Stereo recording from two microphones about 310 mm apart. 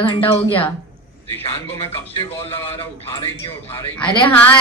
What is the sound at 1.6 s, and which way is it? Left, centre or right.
Speech, centre.